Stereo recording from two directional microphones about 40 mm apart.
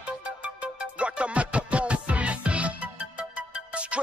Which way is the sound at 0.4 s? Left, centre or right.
Right.